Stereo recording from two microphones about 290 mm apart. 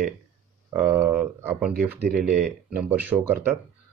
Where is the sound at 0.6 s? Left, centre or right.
Centre.